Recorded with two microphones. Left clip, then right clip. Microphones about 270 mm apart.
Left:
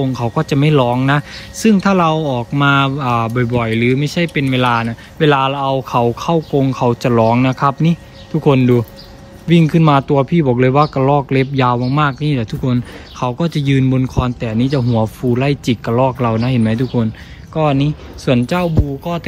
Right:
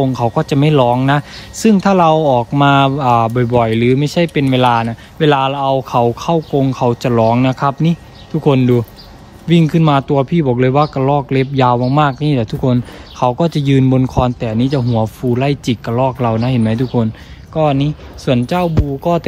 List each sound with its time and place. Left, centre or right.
0.0 s a man's voice: centre
19.1 s speech: right